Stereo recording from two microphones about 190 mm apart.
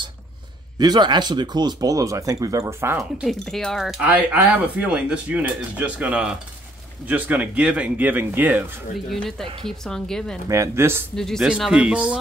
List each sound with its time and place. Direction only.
0.7 s speech: 20° right (ahead or behind)
3.0 s speech: centre (ahead or behind)
9.1 s speech: centre (ahead or behind)
10.5 s speech: 15° right (ahead or behind)
11.1 s speech: centre (ahead or behind)